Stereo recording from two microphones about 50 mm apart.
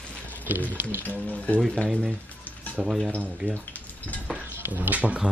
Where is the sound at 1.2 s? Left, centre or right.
Left.